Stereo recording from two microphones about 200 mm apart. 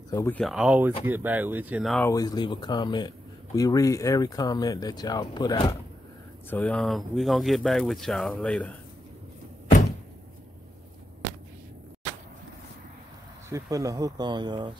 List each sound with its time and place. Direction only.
0.1 s speech: 15° left (ahead or behind)
0.4 s speech: centre (ahead or behind)
2.0 s speech: 15° left (ahead or behind)
6.5 s speech: 5° left (ahead or behind)
13.5 s speech: 15° right (ahead or behind)